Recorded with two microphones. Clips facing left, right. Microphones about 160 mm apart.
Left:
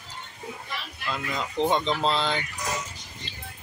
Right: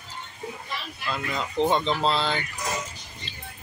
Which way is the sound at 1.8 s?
15° right (ahead or behind).